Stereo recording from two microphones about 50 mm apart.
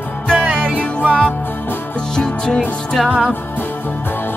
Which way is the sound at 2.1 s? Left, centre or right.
Centre.